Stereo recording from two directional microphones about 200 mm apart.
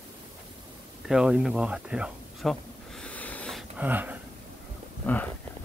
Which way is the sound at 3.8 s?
10° right (ahead or behind).